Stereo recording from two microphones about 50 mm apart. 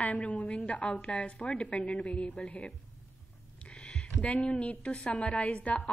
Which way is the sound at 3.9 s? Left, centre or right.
Left.